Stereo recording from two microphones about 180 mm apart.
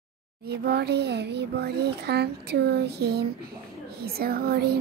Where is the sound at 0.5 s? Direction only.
65° right (ahead or behind).